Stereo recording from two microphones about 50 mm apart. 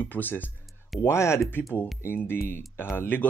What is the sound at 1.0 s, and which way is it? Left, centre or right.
Speech, left.